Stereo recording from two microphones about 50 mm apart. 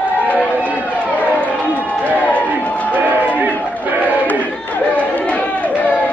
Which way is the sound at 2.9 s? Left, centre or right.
Right.